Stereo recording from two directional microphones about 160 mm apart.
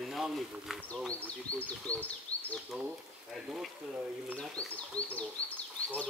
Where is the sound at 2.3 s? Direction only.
20° right (ahead or behind).